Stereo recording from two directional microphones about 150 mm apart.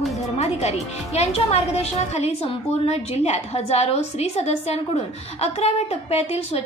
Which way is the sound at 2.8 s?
45° left (ahead or behind).